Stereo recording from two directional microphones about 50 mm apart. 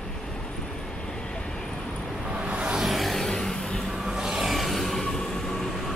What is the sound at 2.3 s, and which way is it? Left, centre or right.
Music, right.